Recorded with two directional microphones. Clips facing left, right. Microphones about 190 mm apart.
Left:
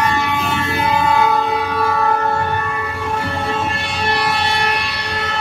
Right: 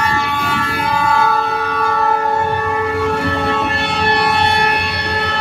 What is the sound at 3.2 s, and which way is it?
Music, 65° right (ahead or behind).